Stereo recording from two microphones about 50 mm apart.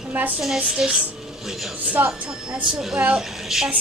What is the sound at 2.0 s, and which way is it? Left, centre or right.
Speech, right.